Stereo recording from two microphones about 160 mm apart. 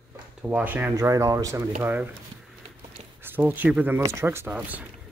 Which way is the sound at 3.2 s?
10° right (ahead or behind).